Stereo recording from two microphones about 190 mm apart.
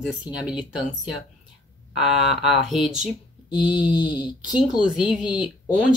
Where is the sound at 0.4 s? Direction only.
5° right (ahead or behind).